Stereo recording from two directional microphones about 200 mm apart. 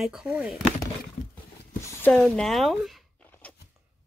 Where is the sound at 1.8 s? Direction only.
5° left (ahead or behind).